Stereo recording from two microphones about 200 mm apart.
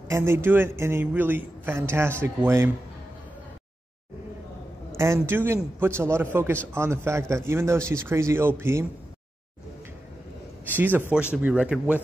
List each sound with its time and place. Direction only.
0.1 s a man's voice: 10° right (ahead or behind)
4.9 s a man's voice: 15° right (ahead or behind)
10.8 s a man's voice: 10° right (ahead or behind)